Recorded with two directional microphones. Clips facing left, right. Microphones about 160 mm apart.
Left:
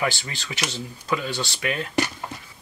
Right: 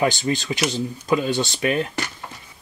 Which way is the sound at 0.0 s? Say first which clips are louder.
Right 7 dB; 20° right (ahead or behind).